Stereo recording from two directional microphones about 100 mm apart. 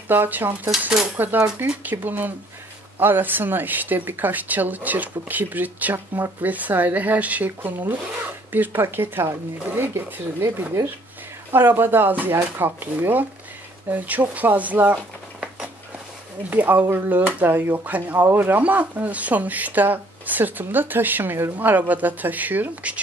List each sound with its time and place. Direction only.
0.1 s speech: 20° right (ahead or behind)
0.7 s speech: 5° right (ahead or behind)
1.1 s speech: 20° right (ahead or behind)
16.4 s speech: 15° right (ahead or behind)